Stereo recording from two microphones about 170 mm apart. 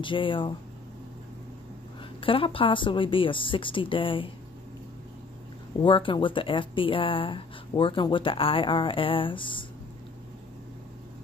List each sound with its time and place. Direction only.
0.0 s speech: 30° left (ahead or behind)
2.1 s speech: 30° left (ahead or behind)
5.8 s speech: 30° left (ahead or behind)